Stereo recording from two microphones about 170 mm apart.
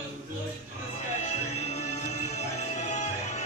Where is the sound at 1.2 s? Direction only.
40° left (ahead or behind).